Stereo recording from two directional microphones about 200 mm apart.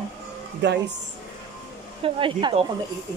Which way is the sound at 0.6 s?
60° right (ahead or behind).